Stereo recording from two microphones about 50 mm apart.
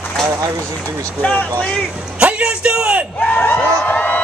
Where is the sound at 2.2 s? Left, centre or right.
Right.